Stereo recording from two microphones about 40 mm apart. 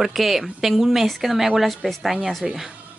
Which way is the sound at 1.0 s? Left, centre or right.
Centre.